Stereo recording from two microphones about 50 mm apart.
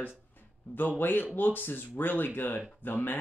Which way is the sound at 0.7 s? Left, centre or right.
Left.